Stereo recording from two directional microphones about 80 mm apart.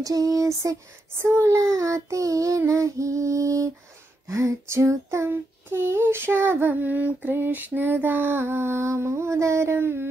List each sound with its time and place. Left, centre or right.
0.0 s child singing: right
1.2 s child singing: right
1.6 s child singing: right